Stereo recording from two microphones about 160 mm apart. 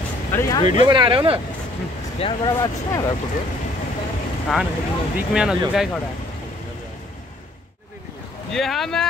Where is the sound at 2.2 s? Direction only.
30° left (ahead or behind).